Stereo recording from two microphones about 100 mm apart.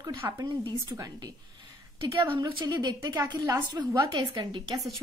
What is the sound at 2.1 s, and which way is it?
A woman's voice, 55° right (ahead or behind).